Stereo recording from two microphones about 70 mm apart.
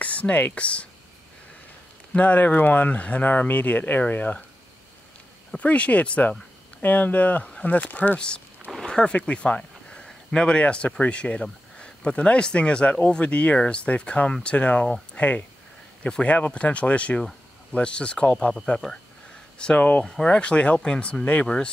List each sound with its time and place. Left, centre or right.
0.0 s a sound: centre
0.6 s speech: centre
2.1 s speech: left
5.6 s speech: centre
8.7 s speech: centre
18.8 s speech: centre
19.6 s speech: centre